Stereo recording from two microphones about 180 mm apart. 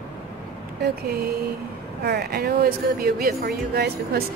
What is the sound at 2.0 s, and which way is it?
A woman's voice, 60° right (ahead or behind).